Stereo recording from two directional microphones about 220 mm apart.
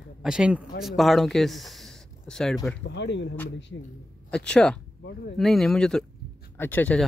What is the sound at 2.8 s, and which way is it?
Speech, 55° left (ahead or behind).